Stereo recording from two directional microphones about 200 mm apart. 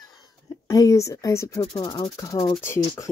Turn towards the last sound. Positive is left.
turn(degrees=15)  # may be behind; listen again after turning